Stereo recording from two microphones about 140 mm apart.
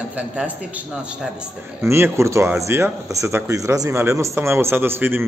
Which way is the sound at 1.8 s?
20° right (ahead or behind).